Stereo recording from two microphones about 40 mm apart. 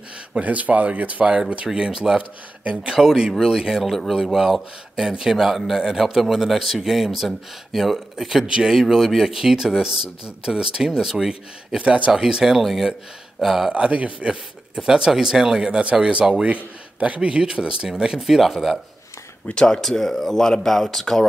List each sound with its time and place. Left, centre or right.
0.4 s speech: right
1.7 s speech: centre
2.1 s speech: right
2.9 s speech: centre
3.7 s a man's voice: centre
11.8 s speech: right
12.1 s speech: centre
12.6 s a man's voice: centre
13.7 s speech: right
14.8 s speech: centre
16.0 s speech: right
18.2 s a man's voice: centre
19.5 s speech: left
19.8 s speech: centre